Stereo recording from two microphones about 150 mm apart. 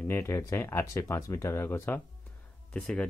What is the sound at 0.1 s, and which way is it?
Speech, 15° left (ahead or behind).